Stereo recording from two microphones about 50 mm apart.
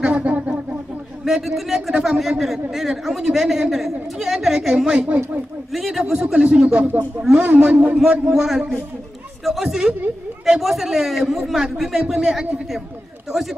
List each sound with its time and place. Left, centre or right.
0.0 s a sound: right
1.2 s speech: centre
4.7 s speech: centre
5.0 s a man's voice: right
5.7 s speech: centre
6.4 s a man's voice: right
8.0 s speech: centre